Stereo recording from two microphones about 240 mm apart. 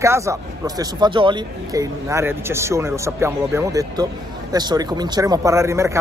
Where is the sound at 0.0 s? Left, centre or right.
Centre.